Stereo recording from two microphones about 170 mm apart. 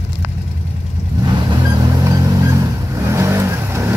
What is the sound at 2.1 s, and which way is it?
Vehicle, 20° right (ahead or behind).